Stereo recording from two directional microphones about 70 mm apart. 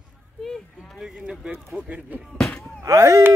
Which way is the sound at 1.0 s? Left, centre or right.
Centre.